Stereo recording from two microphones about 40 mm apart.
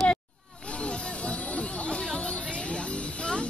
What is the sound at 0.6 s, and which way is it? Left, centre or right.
Music, left.